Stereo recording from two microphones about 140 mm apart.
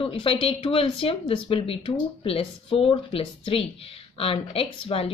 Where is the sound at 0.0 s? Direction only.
40° left (ahead or behind).